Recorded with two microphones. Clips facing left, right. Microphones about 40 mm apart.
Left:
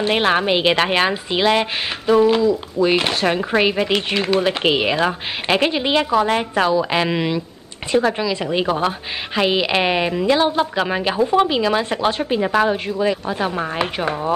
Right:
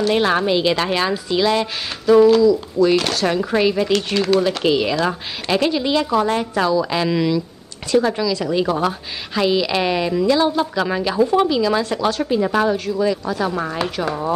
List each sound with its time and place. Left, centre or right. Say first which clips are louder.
0.0 s a woman's voice: even; left